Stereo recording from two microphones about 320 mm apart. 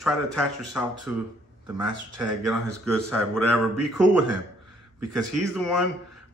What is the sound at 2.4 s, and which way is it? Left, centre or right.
A man's voice, centre.